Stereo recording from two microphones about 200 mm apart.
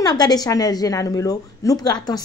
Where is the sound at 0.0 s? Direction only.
20° left (ahead or behind).